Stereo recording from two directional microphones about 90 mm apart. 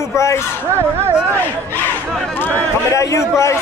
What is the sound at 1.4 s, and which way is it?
Speech, 20° left (ahead or behind).